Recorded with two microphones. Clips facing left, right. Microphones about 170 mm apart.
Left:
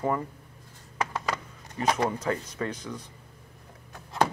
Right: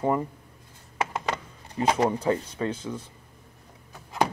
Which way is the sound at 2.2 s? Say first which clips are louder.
Right 4 dB; 30° right (ahead or behind).